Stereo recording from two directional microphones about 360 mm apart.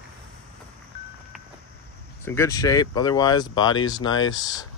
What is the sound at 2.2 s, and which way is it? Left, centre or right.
Speech, centre.